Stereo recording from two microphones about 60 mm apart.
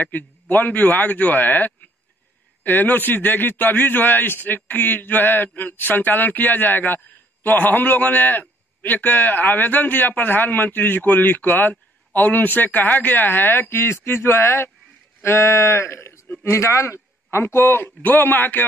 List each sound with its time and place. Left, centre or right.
0.0 s a man's voice: left